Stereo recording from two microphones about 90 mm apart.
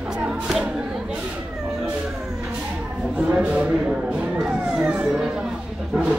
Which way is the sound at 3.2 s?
10° right (ahead or behind).